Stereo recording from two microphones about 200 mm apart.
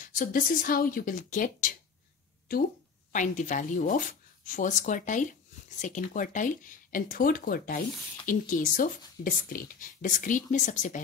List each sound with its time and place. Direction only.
0.0 s speech: 40° left (ahead or behind)